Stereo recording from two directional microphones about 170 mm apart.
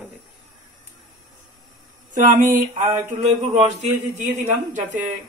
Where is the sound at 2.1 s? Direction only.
50° right (ahead or behind).